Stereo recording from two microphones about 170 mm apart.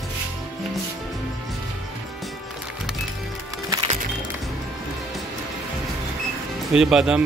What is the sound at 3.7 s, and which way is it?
Music, 30° right (ahead or behind).